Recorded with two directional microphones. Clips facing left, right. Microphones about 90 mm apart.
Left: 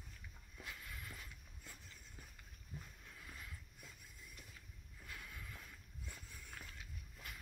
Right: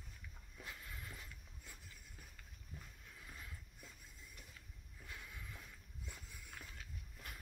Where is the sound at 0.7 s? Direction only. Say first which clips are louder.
Even; 30° right (ahead or behind).